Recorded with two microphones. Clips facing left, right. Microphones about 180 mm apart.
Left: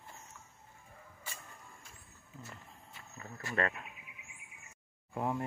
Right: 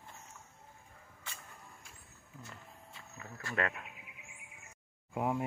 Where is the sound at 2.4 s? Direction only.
Centre (ahead or behind).